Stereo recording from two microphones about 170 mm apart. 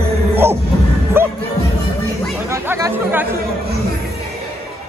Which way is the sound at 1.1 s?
15° right (ahead or behind).